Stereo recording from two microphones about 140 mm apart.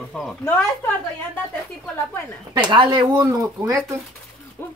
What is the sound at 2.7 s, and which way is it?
Speech, 35° right (ahead or behind).